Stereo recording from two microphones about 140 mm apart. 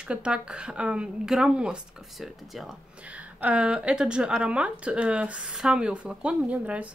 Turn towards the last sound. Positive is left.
turn(degrees=-10)  # may be behind; listen again after turning